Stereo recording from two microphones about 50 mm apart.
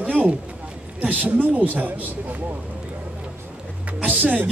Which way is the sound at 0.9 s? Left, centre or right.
Right.